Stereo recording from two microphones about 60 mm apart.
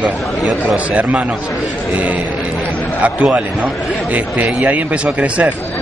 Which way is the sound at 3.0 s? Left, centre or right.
Right.